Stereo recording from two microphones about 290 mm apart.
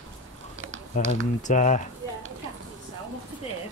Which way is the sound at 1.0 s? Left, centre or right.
Left.